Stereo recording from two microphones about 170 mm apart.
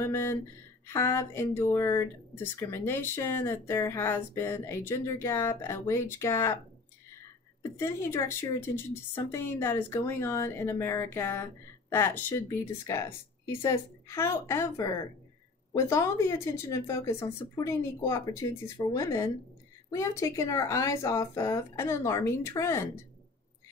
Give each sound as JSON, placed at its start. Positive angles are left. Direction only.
{"t": 0.0, "sound": "speech", "side_deg": 15}
{"t": 7.7, "sound": "a woman's voice", "side_deg": 15}